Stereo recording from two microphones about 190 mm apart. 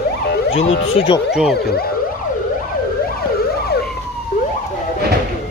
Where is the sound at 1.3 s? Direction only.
5° right (ahead or behind).